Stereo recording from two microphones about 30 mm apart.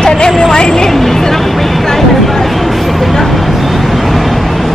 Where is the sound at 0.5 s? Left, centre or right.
Left.